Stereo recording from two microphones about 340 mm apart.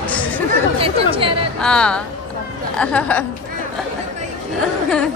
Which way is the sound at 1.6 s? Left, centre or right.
Centre.